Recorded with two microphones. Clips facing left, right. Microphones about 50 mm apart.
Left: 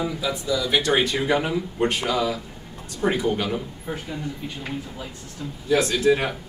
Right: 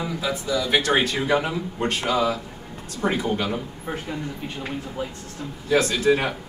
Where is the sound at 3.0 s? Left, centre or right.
Centre.